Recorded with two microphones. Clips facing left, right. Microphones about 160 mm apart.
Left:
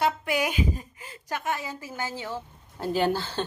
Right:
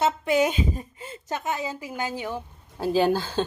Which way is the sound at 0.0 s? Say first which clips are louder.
Right 4 dB; 25° right (ahead or behind).